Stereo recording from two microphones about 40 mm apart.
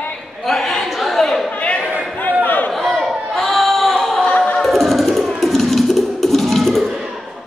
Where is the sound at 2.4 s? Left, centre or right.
Left.